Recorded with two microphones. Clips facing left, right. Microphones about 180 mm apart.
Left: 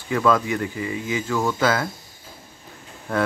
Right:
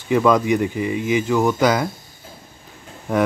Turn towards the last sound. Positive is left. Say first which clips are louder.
# right 4 dB
turn(degrees=-15)  # may be behind; listen again after turning